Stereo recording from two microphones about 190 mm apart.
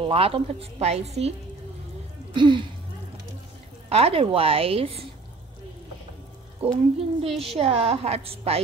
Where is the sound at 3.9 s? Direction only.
30° right (ahead or behind).